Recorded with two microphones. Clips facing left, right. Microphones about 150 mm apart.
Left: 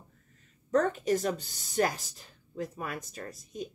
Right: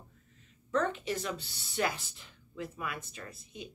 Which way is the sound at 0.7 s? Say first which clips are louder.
Left 5 dB; 40° left (ahead or behind).